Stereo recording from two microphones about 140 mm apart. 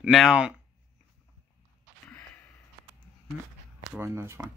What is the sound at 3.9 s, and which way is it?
Speech, 20° right (ahead or behind).